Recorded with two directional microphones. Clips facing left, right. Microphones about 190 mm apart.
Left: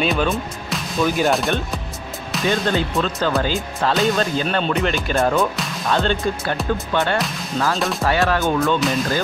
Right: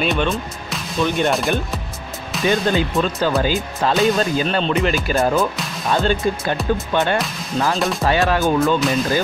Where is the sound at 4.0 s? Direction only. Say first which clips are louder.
Right 3 dB; centre (ahead or behind).